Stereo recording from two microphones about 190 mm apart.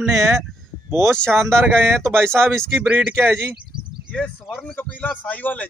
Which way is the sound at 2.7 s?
10° right (ahead or behind).